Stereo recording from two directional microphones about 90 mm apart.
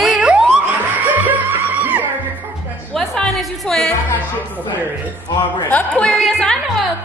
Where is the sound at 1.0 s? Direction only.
20° right (ahead or behind).